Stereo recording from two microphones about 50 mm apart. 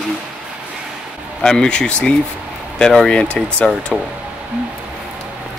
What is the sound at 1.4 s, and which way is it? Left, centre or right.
Speech, centre.